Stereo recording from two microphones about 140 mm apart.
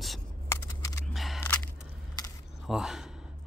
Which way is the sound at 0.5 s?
20° left (ahead or behind).